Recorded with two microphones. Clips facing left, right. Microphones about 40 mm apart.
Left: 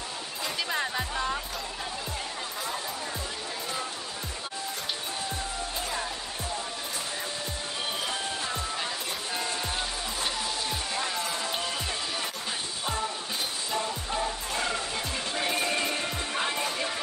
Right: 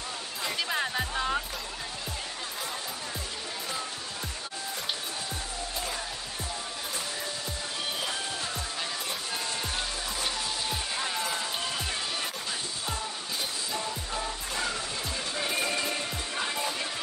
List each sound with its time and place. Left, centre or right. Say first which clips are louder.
0.6 s music: even; centre
10.7 s music: left 1 dB; centre
16.3 s music: left 2 dB; centre